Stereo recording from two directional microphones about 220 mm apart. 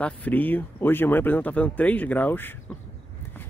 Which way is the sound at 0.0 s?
5° left (ahead or behind).